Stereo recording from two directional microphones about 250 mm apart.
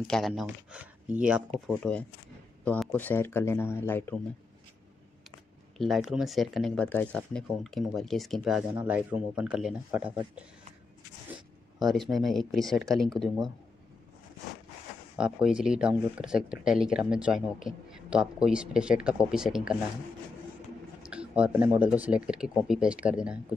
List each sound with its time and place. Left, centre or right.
0.0 s speech: centre
5.8 s speech: centre
11.8 s speech: centre
15.1 s speech: centre
21.0 s speech: centre